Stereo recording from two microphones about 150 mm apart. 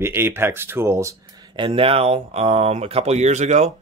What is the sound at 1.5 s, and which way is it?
Speech, 35° right (ahead or behind).